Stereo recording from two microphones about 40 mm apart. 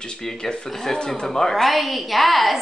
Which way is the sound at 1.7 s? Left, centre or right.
Centre.